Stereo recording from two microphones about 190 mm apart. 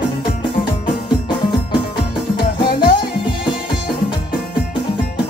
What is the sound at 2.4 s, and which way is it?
Music, 25° left (ahead or behind).